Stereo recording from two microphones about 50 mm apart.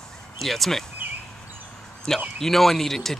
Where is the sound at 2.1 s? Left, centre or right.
Centre.